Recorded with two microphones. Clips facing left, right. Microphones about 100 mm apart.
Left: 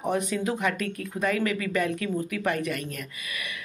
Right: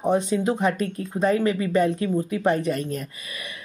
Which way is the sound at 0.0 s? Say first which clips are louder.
Right 5 dB; 25° right (ahead or behind).